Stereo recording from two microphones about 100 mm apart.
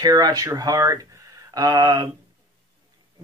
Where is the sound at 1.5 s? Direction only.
45° right (ahead or behind).